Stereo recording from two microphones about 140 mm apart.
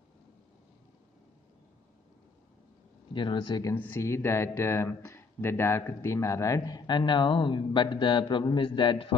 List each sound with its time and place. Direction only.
3.1 s speech: 35° left (ahead or behind)
3.7 s speech: 15° left (ahead or behind); by 9.1 s 35° left (ahead or behind)